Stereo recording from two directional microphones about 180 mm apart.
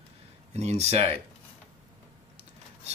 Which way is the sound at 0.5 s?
40° right (ahead or behind).